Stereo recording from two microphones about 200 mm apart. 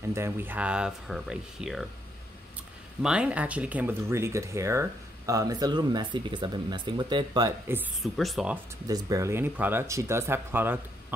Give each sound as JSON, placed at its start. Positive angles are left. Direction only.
{"t": 0.1, "sound": "speech", "side_deg": -10}
{"t": 3.0, "sound": "speech", "side_deg": -5}
{"t": 8.0, "sound": "speech", "side_deg": 0}
{"t": 8.8, "sound": "speech", "side_deg": -15}